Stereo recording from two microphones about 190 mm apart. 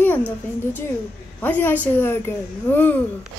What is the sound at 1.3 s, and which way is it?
A woman's voice, 10° left (ahead or behind).